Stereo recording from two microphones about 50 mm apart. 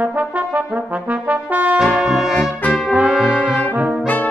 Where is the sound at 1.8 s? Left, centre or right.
Centre.